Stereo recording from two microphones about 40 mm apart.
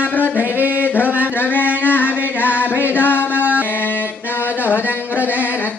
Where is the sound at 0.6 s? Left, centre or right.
Right.